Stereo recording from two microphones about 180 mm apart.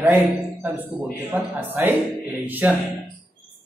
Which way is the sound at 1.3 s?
10° right (ahead or behind).